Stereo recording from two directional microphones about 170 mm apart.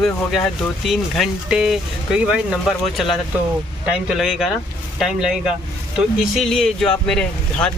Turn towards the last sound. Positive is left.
turn(degrees=5)  # may be behind; listen again after turning